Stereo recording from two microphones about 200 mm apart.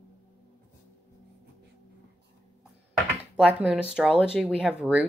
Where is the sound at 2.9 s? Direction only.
5° right (ahead or behind).